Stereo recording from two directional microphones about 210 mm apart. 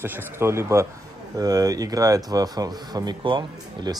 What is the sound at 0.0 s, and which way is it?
Speech, 10° right (ahead or behind).